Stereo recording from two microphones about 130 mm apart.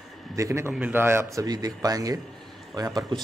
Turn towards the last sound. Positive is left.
turn(degrees=-30)  # may be behind; listen again after turning